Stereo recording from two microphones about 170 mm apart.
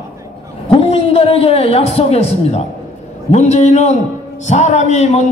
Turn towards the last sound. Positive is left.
turn(degrees=40)  # may be behind; listen again after turning